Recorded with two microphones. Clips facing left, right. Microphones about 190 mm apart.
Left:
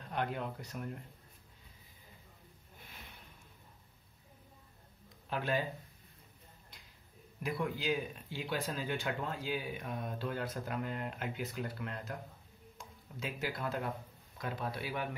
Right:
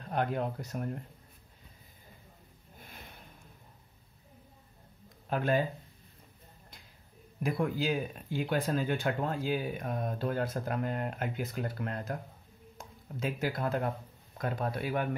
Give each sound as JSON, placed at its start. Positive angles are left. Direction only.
{"t": 0.1, "sound": "speech", "side_deg": -45}
{"t": 5.3, "sound": "speech", "side_deg": -45}
{"t": 7.4, "sound": "speech", "side_deg": -45}